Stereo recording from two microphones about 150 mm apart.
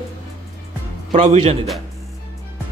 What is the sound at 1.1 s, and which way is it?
Speech, 45° right (ahead or behind).